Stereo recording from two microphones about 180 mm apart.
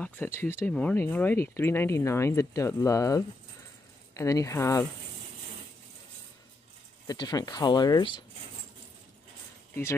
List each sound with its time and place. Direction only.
0.0 s speech: 10° left (ahead or behind)
7.1 s speech: 20° left (ahead or behind)